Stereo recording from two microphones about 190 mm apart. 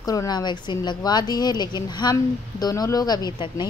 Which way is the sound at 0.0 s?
20° left (ahead or behind).